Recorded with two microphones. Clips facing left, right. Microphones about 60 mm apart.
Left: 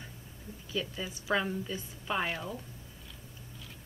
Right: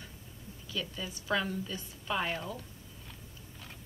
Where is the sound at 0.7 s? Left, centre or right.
Left.